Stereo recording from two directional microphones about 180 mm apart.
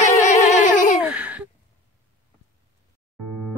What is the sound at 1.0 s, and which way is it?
Sigh, 10° right (ahead or behind).